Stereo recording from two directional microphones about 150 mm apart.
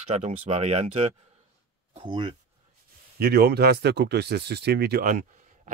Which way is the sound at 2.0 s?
35° right (ahead or behind).